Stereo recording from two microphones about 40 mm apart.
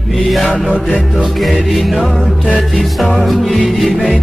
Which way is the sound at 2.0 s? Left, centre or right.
Centre.